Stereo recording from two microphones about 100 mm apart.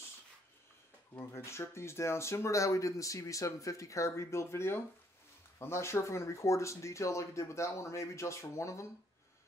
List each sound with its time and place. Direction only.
1.1 s speech: 25° left (ahead or behind)